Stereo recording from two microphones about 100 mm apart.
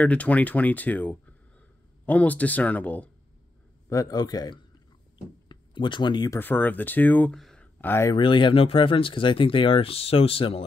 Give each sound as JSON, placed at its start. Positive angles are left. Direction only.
{"t": 0.0, "sound": "speech", "side_deg": 15}
{"t": 3.9, "sound": "speech", "side_deg": 40}
{"t": 5.5, "sound": "speech", "side_deg": 50}
{"t": 6.3, "sound": "speech", "side_deg": 20}
{"t": 7.3, "sound": "a sound", "side_deg": 0}
{"t": 7.6, "sound": "a sound", "side_deg": 20}
{"t": 8.1, "sound": "speech", "side_deg": 55}